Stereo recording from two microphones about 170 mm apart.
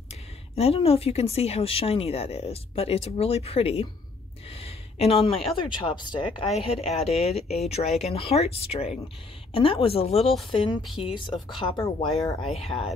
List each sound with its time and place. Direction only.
0.6 s speech: 35° left (ahead or behind)
4.6 s a sound: 35° left (ahead or behind)
6.0 s speech: 30° left (ahead or behind)